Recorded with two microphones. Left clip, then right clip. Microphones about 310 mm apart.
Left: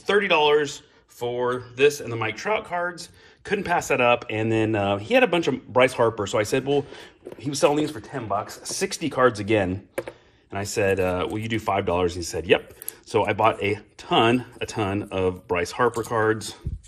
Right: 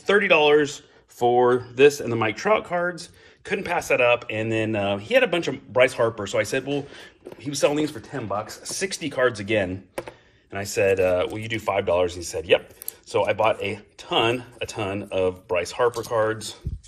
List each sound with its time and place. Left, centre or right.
0.0 s speech: centre